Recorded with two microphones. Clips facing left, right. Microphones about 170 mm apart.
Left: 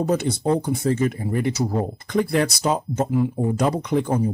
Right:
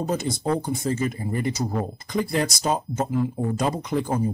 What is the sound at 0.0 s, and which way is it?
Speech, 65° left (ahead or behind).